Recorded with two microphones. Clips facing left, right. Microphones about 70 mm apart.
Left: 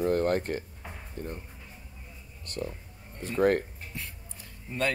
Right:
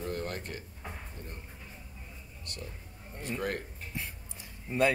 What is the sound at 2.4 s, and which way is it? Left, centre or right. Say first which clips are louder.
Speech: left 10 dB; left.